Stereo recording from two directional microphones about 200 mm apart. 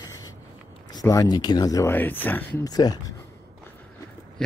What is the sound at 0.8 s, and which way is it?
Speech, 20° left (ahead or behind).